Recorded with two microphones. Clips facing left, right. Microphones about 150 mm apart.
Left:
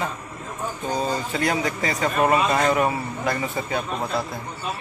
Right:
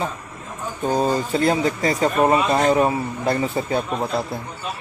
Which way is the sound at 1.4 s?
30° right (ahead or behind).